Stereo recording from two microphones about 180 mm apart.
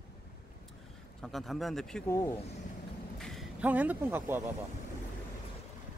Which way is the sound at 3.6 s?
10° right (ahead or behind).